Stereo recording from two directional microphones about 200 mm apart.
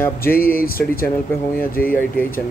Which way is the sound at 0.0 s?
10° left (ahead or behind).